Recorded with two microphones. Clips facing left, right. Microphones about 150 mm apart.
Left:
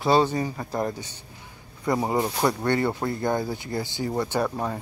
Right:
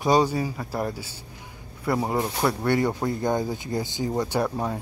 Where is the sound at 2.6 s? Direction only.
10° right (ahead or behind).